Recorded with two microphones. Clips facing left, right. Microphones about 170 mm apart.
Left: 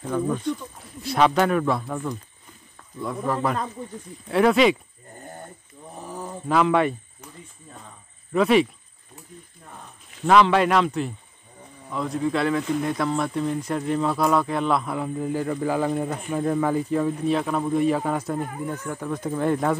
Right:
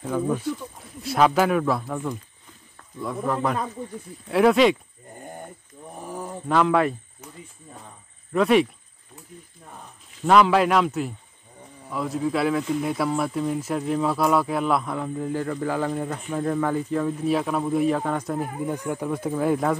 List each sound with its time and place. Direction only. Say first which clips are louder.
0.0 s speech: even; 5° right (ahead or behind)
5.8 s a sound: right 1 dB; 20° right (ahead or behind)
6.4 s speech: even; centre (ahead or behind)
8.3 s speech: even; centre (ahead or behind)
10.2 s speech: even; centre (ahead or behind)
17.2 s speech: even; 5° right (ahead or behind)
18.7 s speech: right 2 dB; 15° right (ahead or behind)